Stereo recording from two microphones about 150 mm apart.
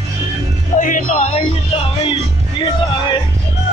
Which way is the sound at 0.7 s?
60° left (ahead or behind).